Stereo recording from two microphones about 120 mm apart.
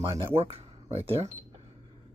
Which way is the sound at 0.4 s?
60° right (ahead or behind).